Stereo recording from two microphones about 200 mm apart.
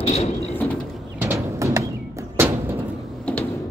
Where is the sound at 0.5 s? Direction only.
5° left (ahead or behind).